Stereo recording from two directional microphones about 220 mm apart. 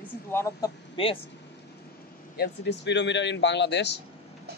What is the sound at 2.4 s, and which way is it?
A man's voice, 50° left (ahead or behind).